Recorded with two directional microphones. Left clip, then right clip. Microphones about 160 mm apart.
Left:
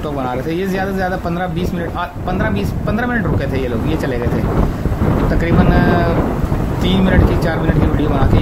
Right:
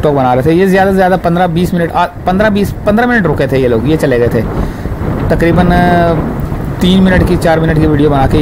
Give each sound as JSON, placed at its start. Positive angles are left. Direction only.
{"t": 0.0, "sound": "speech", "side_deg": -45}
{"t": 5.4, "sound": "speech", "side_deg": -45}